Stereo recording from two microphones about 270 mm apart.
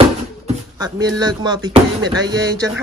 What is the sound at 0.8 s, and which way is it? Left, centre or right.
Speech, centre.